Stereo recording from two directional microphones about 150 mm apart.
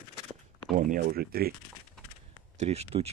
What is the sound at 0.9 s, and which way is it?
Speech, 85° right.